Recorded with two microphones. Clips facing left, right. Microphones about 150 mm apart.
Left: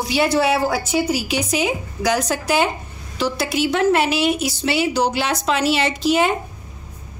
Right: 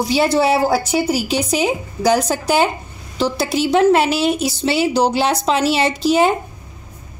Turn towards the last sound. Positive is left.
turn(degrees=-35)  # may be behind; listen again after turning